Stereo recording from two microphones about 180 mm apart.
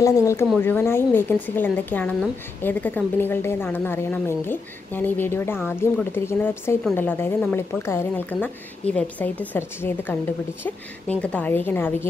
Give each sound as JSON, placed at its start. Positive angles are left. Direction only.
{"t": 0.0, "sound": "a woman's voice", "side_deg": 15}